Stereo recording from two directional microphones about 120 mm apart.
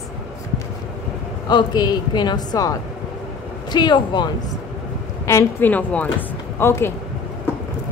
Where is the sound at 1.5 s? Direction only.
35° left (ahead or behind).